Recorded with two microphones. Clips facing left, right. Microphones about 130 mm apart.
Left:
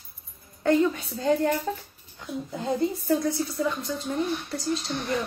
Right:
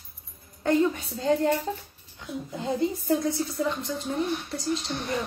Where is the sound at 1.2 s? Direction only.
25° right (ahead or behind).